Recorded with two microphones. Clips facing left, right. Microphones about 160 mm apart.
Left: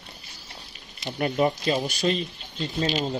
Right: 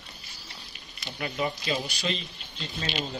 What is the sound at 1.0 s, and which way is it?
Speech, 45° left (ahead or behind).